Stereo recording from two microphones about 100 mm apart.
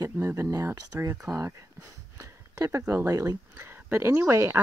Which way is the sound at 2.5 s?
30° right (ahead or behind).